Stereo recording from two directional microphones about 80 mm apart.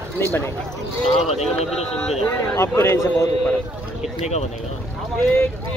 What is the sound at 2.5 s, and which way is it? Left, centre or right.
Speech, left.